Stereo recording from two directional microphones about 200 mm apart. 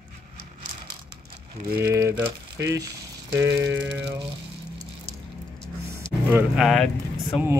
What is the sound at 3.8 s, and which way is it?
Rattle, 60° right (ahead or behind).